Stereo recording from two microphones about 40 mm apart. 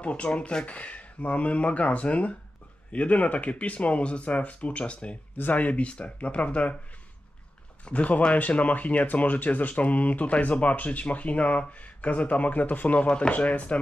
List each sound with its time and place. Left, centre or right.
0.0 s speech: left
0.7 s speech: left
5.4 s speech: left
7.8 s speech: left